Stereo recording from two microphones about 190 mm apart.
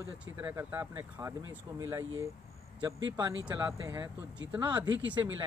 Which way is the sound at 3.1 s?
20° right (ahead or behind).